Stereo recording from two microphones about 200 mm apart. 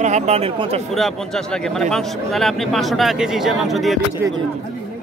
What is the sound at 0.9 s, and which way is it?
Speech, centre (ahead or behind).